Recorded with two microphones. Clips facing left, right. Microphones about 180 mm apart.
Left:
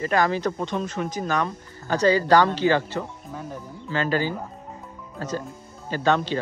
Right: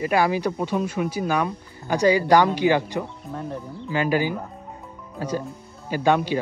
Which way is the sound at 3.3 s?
5° left (ahead or behind).